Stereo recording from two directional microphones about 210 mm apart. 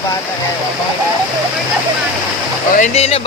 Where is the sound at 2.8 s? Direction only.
30° left (ahead or behind).